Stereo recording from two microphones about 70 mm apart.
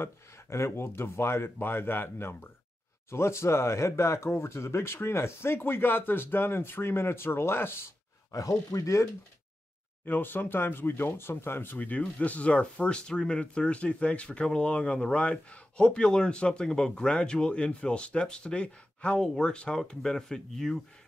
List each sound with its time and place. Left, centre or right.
0.0 s speech: left
8.3 s speech: left
10.0 s speech: left; by 20.8 s centre